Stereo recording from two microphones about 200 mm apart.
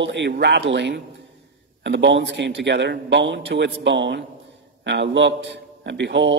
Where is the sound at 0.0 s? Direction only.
60° right (ahead or behind).